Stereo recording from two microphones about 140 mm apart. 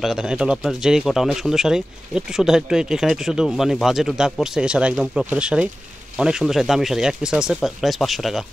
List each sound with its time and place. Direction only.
0.0 s speech: 5° right (ahead or behind)